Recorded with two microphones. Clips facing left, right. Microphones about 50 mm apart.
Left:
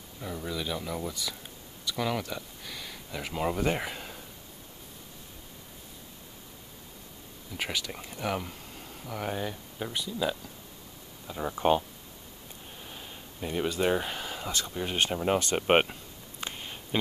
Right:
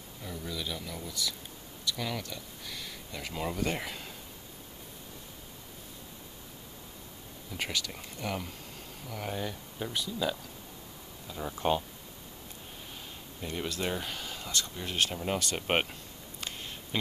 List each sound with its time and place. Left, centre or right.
0.2 s speech: centre
7.5 s speech: centre
11.2 s speech: left
12.9 s speech: centre
16.4 s a sound: centre